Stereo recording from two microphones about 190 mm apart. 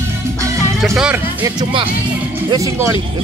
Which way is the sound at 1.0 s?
10° right (ahead or behind).